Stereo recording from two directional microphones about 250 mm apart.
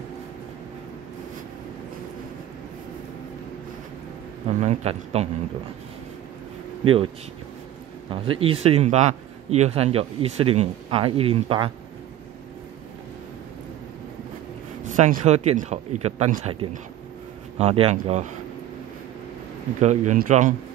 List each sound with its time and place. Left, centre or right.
4.5 s speech: right
6.8 s speech: right
8.1 s speech: right
15.0 s speech: right
17.6 s speech: right
19.8 s speech: right